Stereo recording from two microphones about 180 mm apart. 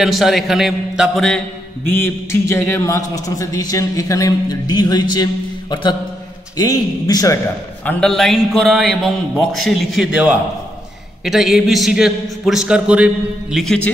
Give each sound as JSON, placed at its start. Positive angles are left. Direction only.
{"t": 0.0, "sound": "a man's voice", "side_deg": 0}
{"t": 1.9, "sound": "a man's voice", "side_deg": 10}
{"t": 7.8, "sound": "a man's voice", "side_deg": 5}